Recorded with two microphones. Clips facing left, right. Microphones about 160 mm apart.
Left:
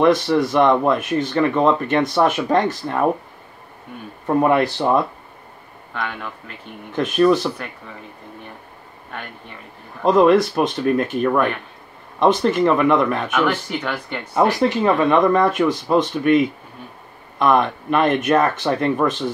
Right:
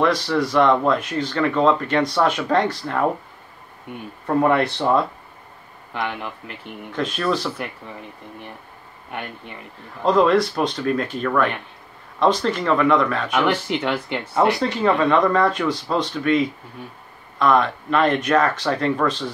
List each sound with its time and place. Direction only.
0.0 s speech: 20° left (ahead or behind)
4.3 s speech: 20° left (ahead or behind)
5.9 s speech: 15° right (ahead or behind)
6.9 s speech: 20° left (ahead or behind)
10.0 s speech: 20° left (ahead or behind)
13.3 s speech: 15° right (ahead or behind)
14.2 s speech: 15° left (ahead or behind)